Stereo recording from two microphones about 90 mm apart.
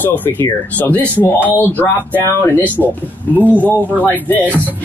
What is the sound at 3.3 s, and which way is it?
Speech, 20° right (ahead or behind).